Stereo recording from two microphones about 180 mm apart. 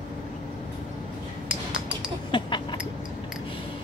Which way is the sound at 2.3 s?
25° left (ahead or behind).